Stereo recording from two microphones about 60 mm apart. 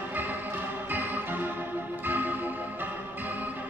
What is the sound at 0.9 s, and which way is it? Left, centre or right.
Music, right.